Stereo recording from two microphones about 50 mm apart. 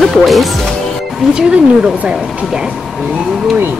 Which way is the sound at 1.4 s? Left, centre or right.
Centre.